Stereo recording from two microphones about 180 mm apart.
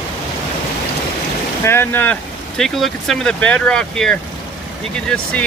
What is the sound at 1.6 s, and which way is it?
Speech, 15° left (ahead or behind).